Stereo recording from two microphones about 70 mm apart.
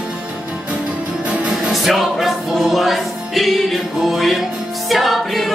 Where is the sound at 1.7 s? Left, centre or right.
Centre.